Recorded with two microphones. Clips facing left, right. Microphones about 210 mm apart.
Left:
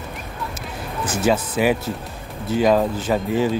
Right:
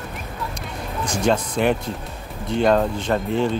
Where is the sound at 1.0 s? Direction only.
5° left (ahead or behind).